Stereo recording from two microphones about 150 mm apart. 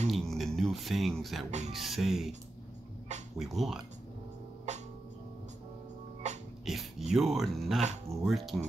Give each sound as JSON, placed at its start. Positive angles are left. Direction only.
{"t": 0.1, "sound": "a sound", "side_deg": 0}
{"t": 1.7, "sound": "speech", "side_deg": 0}
{"t": 3.3, "sound": "speech", "side_deg": 0}
{"t": 4.7, "sound": "music", "side_deg": -50}
{"t": 6.2, "sound": "music", "side_deg": -50}
{"t": 6.6, "sound": "speech", "side_deg": 0}